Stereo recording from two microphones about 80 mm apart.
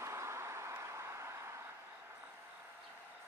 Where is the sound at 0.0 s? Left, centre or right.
Right.